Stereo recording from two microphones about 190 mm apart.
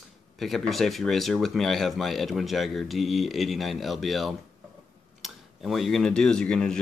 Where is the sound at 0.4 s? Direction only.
Centre (ahead or behind).